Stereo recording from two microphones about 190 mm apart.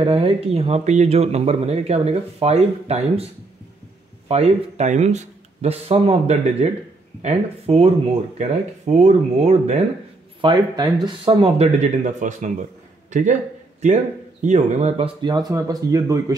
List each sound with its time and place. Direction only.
0.0 s speech: 30° right (ahead or behind)
4.3 s speech: 35° right (ahead or behind)
10.4 s speech: 25° right (ahead or behind)
15.2 s speech: 20° right (ahead or behind)